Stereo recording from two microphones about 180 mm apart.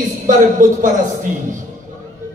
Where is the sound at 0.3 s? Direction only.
50° right (ahead or behind).